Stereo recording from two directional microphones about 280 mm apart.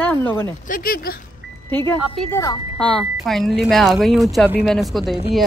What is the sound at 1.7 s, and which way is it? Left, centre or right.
Speech, centre.